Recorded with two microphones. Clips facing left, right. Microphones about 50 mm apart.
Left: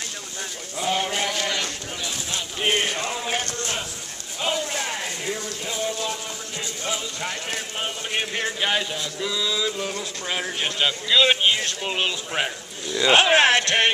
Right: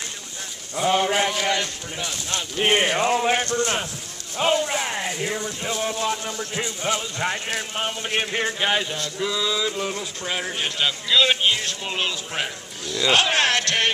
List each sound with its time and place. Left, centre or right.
0.7 s speech: right
2.6 s a sound: right
4.4 s speech: right
4.7 s music: centre
7.2 s speech: right; by 13.9 s centre